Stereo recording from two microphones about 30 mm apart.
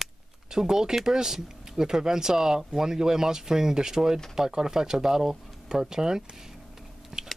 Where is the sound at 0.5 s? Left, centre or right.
Right.